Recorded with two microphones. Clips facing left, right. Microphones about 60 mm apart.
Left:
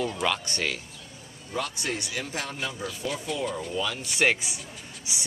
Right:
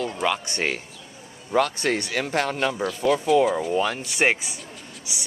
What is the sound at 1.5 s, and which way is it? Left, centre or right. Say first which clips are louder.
Speech: right 9 dB; right.